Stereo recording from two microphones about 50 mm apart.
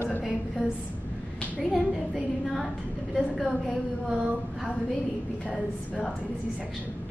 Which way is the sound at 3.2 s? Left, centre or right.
Centre.